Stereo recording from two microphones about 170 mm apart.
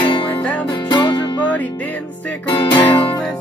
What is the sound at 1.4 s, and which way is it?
Music, 10° left (ahead or behind).